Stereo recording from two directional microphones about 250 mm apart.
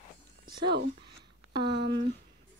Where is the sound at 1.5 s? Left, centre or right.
Centre.